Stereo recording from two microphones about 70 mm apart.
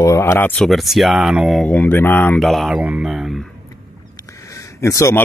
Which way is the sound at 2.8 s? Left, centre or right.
Right.